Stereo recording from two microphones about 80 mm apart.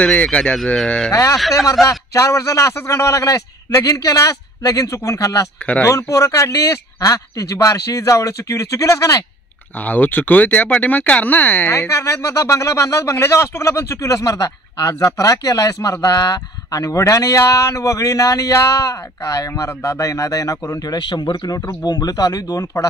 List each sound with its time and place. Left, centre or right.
0.0 s speech: centre
1.1 s a man's voice: left
9.8 s speech: left
11.9 s speech: left
21.0 s speech: left
21.5 s a man's voice: left